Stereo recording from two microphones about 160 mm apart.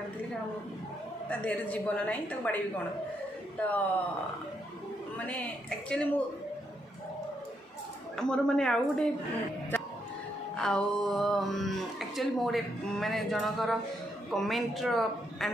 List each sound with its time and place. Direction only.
1.3 s a woman's voice: 10° left (ahead or behind)
5.1 s a woman's voice: 10° left (ahead or behind)
8.2 s speech: 5° left (ahead or behind)
10.5 s speech: 5° left (ahead or behind)